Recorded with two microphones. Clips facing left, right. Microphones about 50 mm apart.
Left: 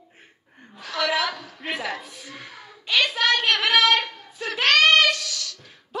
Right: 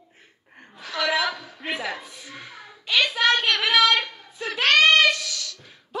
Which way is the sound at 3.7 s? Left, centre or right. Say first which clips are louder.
Even; centre.